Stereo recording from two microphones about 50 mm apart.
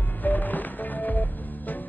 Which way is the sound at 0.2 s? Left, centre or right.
Left.